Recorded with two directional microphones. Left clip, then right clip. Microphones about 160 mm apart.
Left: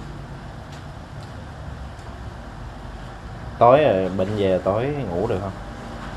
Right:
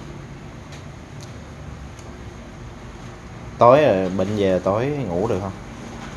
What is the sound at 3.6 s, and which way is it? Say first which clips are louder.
Speech: right 1 dB; 35° right (ahead or behind).